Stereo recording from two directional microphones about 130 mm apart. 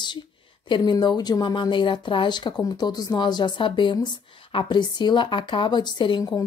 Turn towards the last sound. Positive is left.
turn(degrees=35)  # may be behind; listen again after turning